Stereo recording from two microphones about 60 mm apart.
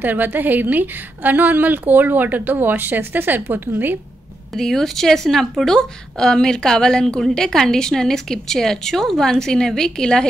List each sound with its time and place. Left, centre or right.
0.0 s a woman's voice: right
4.6 s a woman's voice: centre